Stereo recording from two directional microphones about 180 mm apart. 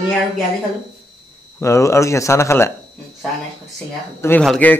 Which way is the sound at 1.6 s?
15° left (ahead or behind).